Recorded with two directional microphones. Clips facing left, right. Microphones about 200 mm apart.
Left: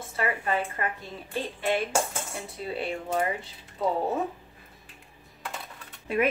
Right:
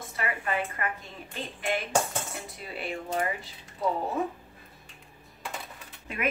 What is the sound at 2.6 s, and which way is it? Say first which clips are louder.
Speech: left 12 dB; 30° left (ahead or behind).